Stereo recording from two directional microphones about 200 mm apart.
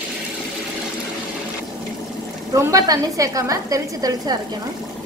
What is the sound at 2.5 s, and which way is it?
A woman's voice, 15° right (ahead or behind).